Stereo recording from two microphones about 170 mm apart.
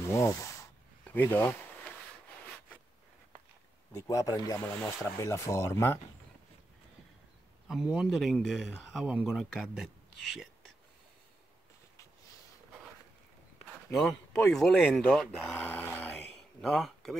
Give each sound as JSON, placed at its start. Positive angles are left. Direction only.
{"t": 0.1, "sound": "speech", "side_deg": 15}
{"t": 3.9, "sound": "speech", "side_deg": 20}
{"t": 7.6, "sound": "a man's voice", "side_deg": -5}
{"t": 14.5, "sound": "a man's voice", "side_deg": 0}
{"t": 15.6, "sound": "a man's voice", "side_deg": 10}